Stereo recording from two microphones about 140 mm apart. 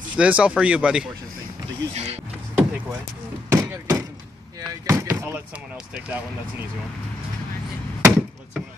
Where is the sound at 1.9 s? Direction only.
50° right (ahead or behind).